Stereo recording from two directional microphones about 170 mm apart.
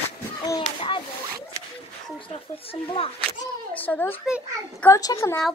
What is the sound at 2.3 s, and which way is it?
Speech, 35° left (ahead or behind).